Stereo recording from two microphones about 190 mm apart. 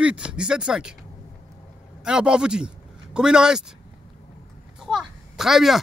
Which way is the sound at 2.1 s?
5° right (ahead or behind).